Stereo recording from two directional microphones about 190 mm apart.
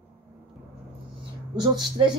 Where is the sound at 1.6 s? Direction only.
25° right (ahead or behind).